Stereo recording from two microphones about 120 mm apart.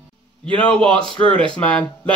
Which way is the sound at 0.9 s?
45° right (ahead or behind).